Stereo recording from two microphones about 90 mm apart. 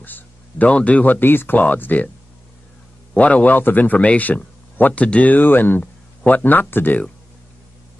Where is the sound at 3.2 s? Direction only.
15° left (ahead or behind).